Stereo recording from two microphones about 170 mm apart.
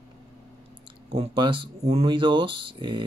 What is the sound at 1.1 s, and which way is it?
Speech, 30° right (ahead or behind).